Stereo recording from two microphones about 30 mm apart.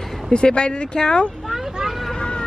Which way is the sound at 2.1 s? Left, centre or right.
Left.